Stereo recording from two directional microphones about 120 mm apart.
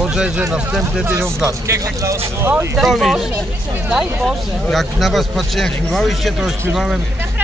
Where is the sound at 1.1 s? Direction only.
25° right (ahead or behind).